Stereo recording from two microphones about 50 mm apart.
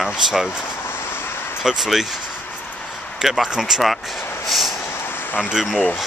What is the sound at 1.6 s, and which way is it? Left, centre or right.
Speech, centre.